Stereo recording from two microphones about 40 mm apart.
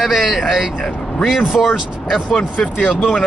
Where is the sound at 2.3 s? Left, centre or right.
Left.